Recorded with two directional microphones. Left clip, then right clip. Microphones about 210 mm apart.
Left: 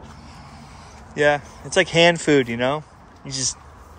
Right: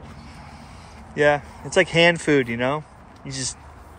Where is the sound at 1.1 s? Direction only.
10° left (ahead or behind).